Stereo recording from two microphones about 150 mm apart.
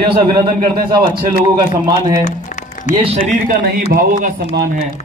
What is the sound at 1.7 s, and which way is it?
Speech, 25° right (ahead or behind).